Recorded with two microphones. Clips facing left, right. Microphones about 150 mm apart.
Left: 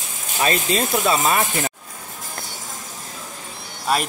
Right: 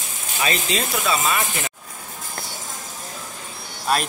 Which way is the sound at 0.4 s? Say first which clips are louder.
Left 4 dB; 40° left (ahead or behind).